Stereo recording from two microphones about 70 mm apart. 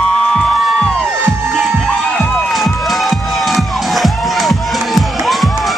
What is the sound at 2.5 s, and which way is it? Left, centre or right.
Music, centre.